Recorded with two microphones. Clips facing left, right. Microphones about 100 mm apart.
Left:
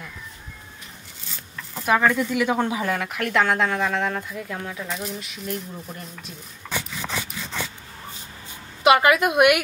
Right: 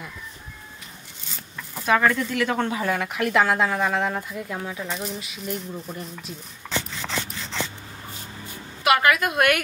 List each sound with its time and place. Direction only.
1.9 s a woman's voice: 5° left (ahead or behind)
6.7 s a sound: 10° left (ahead or behind)
8.8 s speech: 20° left (ahead or behind)